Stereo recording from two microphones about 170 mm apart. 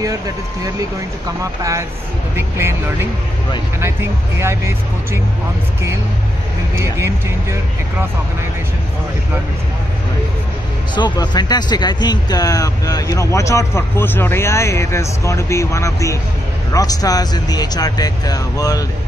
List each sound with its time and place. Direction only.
1.4 s speech: 20° right (ahead or behind)
11.0 s speech: 25° left (ahead or behind)